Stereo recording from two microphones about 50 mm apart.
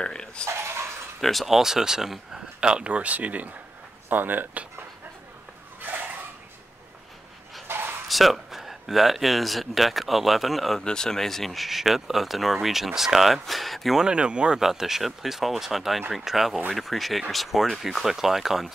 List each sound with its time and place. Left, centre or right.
0.0 s dog: centre
0.5 s dog: right
1.2 s speech: centre
2.9 s speech: right
5.8 s a sound: right
7.6 s bow-wow: right
8.1 s speech: centre
10.8 s speech: centre
13.9 s speech: centre
14.6 s speech: centre